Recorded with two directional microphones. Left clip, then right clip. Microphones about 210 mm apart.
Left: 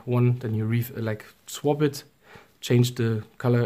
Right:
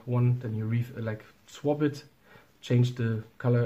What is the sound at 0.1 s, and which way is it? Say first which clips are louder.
Speech: left 6 dB; 45° left (ahead or behind).